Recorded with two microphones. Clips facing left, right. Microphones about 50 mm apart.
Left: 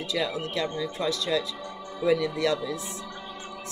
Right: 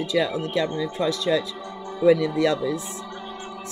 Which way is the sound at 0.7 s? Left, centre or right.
Right.